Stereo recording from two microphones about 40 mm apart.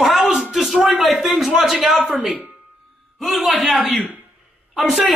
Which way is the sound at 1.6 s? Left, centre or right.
Centre.